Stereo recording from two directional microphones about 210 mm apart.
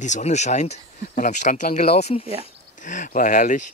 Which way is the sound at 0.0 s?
35° left (ahead or behind).